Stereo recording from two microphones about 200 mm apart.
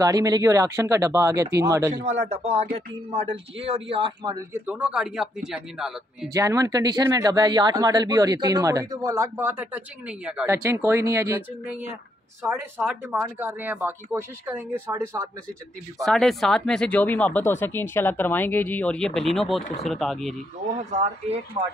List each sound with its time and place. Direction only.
0.0 s speech: 20° right (ahead or behind)
2.0 s speech: 30° right (ahead or behind)
4.6 s speech: 5° right (ahead or behind)
6.3 s speech: 15° right (ahead or behind)
16.0 s speech: centre (ahead or behind)
20.6 s speech: 35° right (ahead or behind)